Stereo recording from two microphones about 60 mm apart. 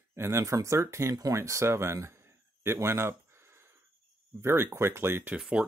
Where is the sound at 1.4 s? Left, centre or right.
Right.